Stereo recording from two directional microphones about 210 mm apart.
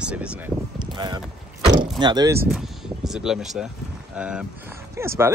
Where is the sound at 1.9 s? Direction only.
20° right (ahead or behind).